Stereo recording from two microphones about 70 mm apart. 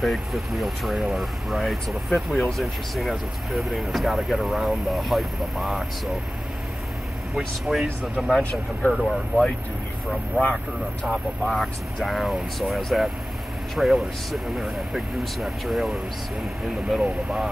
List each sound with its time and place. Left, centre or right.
0.0 s speech: centre
7.3 s speech: centre
8.4 s speech: centre
8.9 s speech: centre
11.1 s speech: centre